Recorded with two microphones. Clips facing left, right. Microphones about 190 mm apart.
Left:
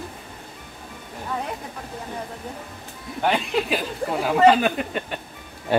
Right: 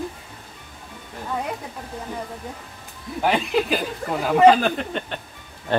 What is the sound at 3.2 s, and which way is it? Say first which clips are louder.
Speech: right 2 dB; centre (ahead or behind).